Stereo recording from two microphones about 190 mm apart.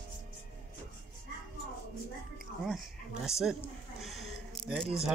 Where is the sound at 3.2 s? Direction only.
Centre (ahead or behind).